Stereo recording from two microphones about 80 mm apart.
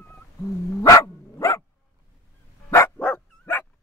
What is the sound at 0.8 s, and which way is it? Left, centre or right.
Dog, left.